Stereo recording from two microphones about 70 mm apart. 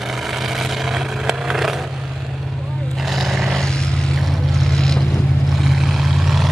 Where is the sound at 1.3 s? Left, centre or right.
Centre.